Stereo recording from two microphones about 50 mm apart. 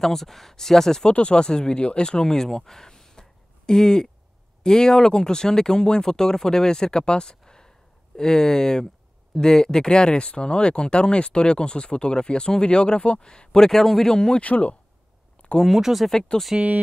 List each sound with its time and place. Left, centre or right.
0.0 s speech: centre
1.1 s speech: left
14.4 s speech: left
15.5 s speech: centre
16.1 s speech: centre